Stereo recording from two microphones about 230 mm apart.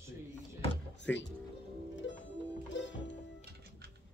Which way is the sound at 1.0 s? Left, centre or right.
Left.